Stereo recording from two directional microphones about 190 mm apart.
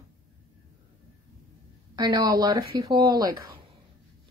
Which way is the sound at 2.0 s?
20° right (ahead or behind).